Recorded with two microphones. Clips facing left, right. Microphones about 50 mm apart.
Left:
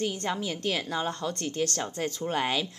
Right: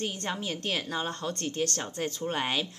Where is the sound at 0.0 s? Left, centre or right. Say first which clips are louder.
Left 3 dB; right.